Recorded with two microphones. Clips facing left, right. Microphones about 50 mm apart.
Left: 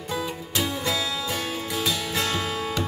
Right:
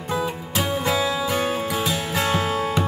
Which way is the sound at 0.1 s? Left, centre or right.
Right.